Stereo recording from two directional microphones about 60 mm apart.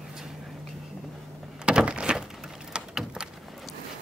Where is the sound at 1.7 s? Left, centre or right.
Centre.